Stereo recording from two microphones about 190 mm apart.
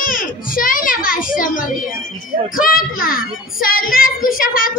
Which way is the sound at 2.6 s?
50° left (ahead or behind).